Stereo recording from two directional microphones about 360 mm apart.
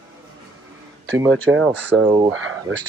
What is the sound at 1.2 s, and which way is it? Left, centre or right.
Speech, centre.